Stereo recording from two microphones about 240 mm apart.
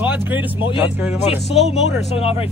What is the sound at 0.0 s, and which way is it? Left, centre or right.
Speech, centre.